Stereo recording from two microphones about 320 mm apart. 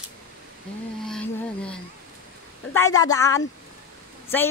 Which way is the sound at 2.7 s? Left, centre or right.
Centre.